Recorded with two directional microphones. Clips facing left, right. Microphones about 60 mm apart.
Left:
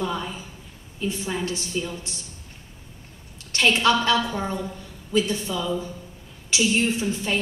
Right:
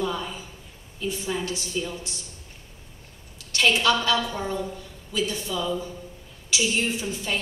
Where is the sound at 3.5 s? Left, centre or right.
Left.